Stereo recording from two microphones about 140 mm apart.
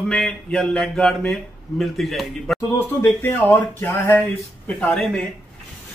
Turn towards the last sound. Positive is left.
turn(degrees=5)  # may be behind; listen again after turning